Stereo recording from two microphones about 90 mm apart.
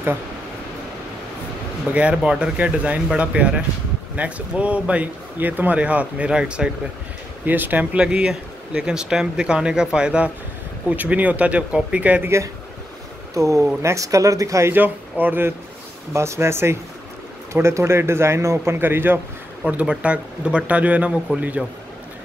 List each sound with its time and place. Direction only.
1.9 s speech: 15° right (ahead or behind)
7.4 s speech: 20° right (ahead or behind)
13.3 s a man's voice: 35° right (ahead or behind); by 21.6 s 10° right (ahead or behind)